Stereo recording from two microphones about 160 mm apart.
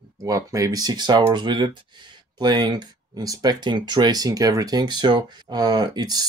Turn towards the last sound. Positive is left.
turn(degrees=-25)  # may be behind; listen again after turning